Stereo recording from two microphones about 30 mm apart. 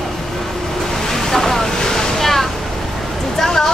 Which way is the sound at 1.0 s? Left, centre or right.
Centre.